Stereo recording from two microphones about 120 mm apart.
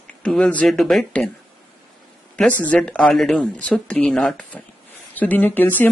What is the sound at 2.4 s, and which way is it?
Speech, 10° left (ahead or behind).